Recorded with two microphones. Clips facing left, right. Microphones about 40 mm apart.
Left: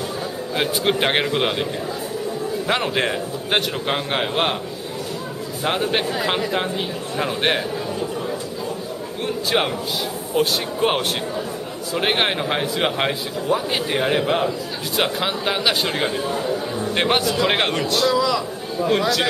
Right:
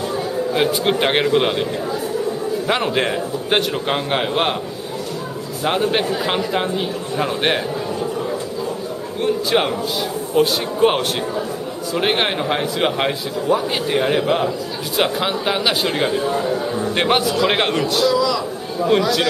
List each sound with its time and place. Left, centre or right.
0.6 s a man's voice: centre
2.7 s a man's voice: centre
5.7 s a man's voice: centre
9.2 s a man's voice: centre
18.1 s a man's voice: centre
18.9 s a man's voice: centre